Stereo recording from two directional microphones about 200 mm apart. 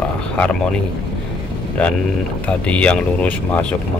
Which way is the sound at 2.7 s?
5° left (ahead or behind).